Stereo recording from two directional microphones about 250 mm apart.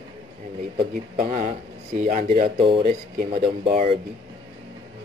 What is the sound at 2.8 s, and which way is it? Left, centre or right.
Speech, right.